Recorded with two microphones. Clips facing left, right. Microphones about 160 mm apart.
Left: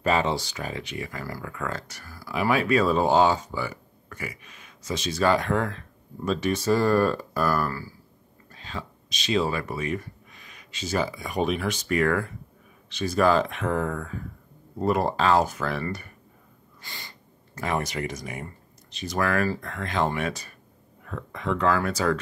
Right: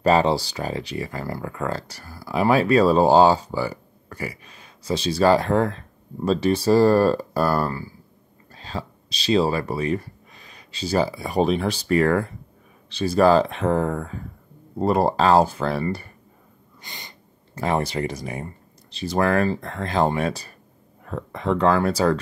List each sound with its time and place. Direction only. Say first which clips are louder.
0.0 s speech: right 6 dB; 35° right (ahead or behind)
8.5 s speech: right 5 dB; 35° right (ahead or behind)
16.8 s snort: right 2 dB; 20° right (ahead or behind)
17.6 s speech: right 5 dB; 30° right (ahead or behind)